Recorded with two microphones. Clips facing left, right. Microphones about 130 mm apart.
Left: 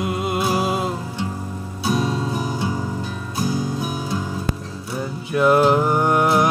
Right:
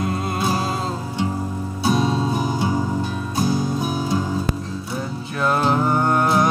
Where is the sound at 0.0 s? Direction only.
10° left (ahead or behind).